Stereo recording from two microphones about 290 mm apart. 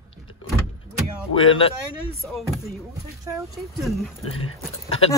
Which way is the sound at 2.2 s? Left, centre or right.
Centre.